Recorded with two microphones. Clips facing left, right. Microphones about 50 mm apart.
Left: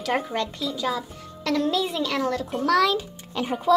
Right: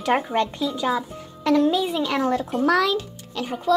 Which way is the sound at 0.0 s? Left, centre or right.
Right.